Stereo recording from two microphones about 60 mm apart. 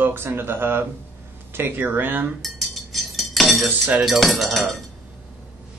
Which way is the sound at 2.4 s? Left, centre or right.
Centre.